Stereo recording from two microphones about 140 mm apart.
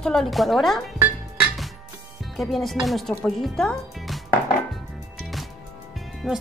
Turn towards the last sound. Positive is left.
turn(degrees=0)  # may be behind; listen again after turning